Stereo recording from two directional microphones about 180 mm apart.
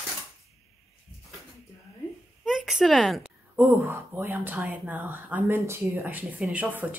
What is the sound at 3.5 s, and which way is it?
Speech, 15° right (ahead or behind).